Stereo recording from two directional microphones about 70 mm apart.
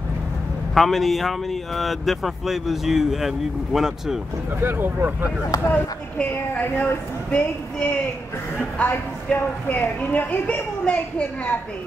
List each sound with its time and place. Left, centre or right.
0.7 s speech: centre
4.6 s speech: right
5.7 s a woman's voice: left